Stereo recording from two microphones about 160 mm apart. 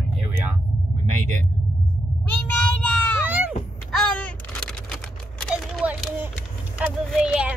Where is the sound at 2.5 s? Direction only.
10° left (ahead or behind).